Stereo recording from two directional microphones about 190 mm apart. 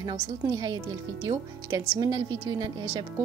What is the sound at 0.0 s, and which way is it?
Speech, 25° right (ahead or behind).